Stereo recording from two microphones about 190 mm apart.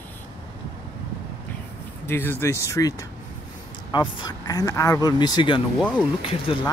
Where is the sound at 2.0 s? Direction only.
10° left (ahead or behind).